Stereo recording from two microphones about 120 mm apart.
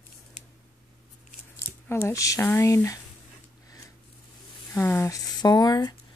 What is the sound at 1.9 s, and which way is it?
Speech, 20° left (ahead or behind).